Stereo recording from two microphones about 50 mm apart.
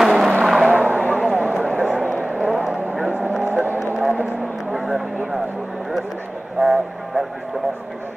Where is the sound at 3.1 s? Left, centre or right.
Right.